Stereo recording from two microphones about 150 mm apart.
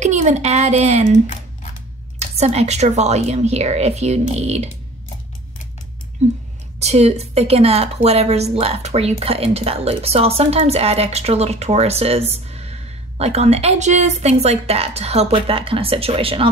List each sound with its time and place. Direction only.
0.0 s a woman's voice: 50° right (ahead or behind)
1.2 s a sound: 55° left (ahead or behind)
2.1 s a woman's voice: 45° right (ahead or behind)
6.8 s a woman's voice: 45° right (ahead or behind)